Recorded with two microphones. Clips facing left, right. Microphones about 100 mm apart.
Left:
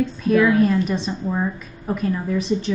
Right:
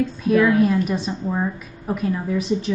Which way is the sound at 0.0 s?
5° right (ahead or behind).